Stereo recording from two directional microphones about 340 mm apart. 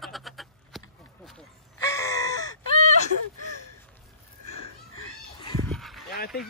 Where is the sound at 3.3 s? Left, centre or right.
Left.